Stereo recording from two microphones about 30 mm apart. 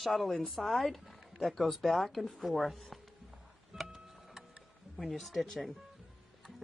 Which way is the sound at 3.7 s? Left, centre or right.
Right.